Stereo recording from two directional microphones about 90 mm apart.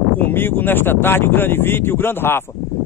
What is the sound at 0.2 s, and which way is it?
Speech, 25° left (ahead or behind).